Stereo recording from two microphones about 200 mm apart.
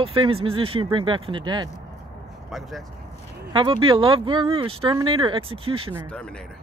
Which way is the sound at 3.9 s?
25° right (ahead or behind).